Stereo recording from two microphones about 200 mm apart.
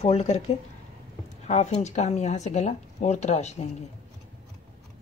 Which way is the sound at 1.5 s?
35° left (ahead or behind).